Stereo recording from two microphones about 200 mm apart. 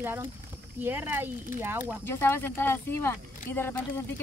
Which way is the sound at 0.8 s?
10° right (ahead or behind).